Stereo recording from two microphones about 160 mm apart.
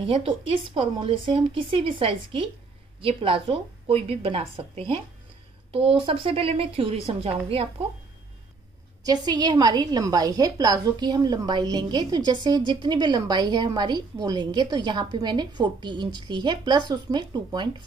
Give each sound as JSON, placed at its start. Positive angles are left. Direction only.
{"t": 0.0, "sound": "speech", "side_deg": -35}
{"t": 9.0, "sound": "a woman's voice", "side_deg": -25}